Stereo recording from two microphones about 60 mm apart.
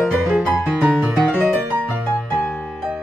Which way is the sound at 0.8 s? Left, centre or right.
Right.